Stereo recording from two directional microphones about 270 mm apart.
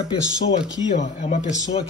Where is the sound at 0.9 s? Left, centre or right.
Left.